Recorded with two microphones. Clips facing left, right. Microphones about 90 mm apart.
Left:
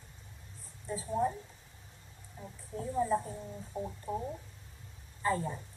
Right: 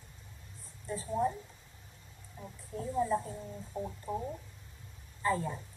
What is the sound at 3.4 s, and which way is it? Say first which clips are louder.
Speech: even; centre (ahead or behind).